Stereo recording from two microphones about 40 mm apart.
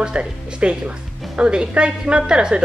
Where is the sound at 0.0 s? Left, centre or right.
Right.